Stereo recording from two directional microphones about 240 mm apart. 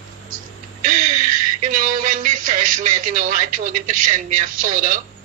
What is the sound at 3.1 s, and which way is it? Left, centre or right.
Speech, right.